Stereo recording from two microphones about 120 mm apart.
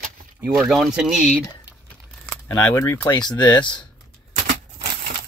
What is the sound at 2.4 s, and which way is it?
Speech, 25° left (ahead or behind).